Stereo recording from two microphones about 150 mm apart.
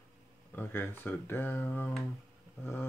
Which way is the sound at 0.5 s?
15° left (ahead or behind).